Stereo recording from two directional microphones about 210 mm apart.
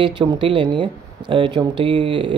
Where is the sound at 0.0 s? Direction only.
25° right (ahead or behind).